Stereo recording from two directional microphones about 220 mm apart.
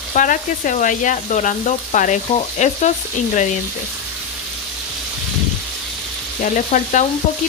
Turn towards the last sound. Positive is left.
turn(degrees=35)  # may be behind; listen again after turning